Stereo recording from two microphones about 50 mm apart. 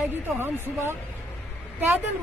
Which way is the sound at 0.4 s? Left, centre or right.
Right.